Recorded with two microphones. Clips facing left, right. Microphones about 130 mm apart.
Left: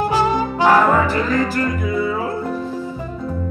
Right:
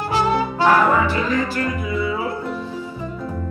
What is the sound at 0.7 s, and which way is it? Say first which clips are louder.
Music: left 2 dB; 40° left (ahead or behind).